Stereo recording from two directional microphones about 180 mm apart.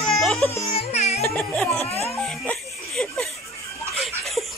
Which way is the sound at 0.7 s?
35° left (ahead or behind).